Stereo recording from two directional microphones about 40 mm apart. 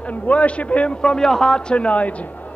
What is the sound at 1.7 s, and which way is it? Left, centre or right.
Speech, left.